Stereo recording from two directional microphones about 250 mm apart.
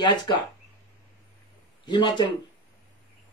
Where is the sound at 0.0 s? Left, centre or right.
Centre.